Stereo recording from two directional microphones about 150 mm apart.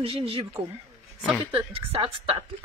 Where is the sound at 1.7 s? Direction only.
40° right (ahead or behind).